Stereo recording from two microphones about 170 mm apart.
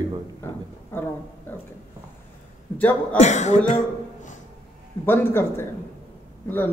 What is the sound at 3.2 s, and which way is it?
Speech, 45° left (ahead or behind).